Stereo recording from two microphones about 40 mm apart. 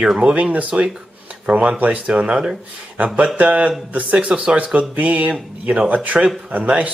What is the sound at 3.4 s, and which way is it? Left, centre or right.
Speech, right.